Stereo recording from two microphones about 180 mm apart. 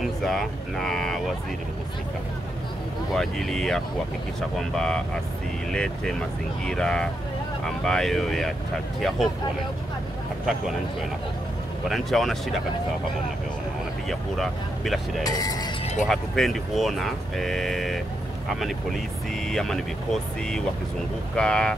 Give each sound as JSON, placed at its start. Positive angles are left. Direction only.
{"t": 0.0, "sound": "speech", "side_deg": 0}
{"t": 3.1, "sound": "speech", "side_deg": 0}
{"t": 11.9, "sound": "speech", "side_deg": 0}
{"t": 14.0, "sound": "speech", "side_deg": 0}
{"t": 15.2, "sound": "speech", "side_deg": 20}
{"t": 16.0, "sound": "speech", "side_deg": 0}
{"t": 19.4, "sound": "speech", "side_deg": 0}